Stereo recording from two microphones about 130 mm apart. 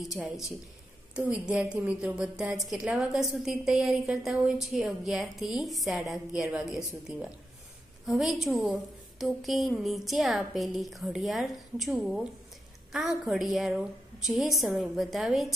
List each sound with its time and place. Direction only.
0.0 s a woman's voice: centre (ahead or behind)